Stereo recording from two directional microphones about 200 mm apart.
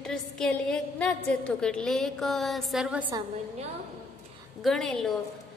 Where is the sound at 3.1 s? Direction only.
25° right (ahead or behind).